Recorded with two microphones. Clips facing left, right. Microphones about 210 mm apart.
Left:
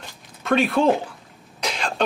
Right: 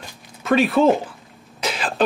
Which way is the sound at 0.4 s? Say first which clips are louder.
Right 3 dB; centre (ahead or behind).